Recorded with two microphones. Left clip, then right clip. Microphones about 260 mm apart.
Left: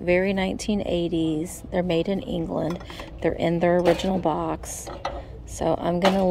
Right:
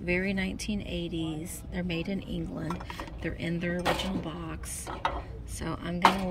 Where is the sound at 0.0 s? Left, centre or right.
Centre.